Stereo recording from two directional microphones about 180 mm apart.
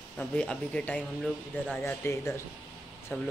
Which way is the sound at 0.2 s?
5° left (ahead or behind).